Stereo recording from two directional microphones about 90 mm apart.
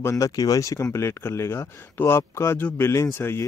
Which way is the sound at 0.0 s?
35° left (ahead or behind).